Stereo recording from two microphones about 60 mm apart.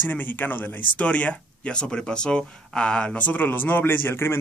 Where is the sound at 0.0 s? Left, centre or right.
Left.